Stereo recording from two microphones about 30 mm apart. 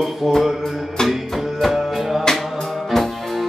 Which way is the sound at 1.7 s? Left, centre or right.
Centre.